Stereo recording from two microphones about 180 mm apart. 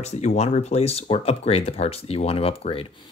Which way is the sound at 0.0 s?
40° left (ahead or behind).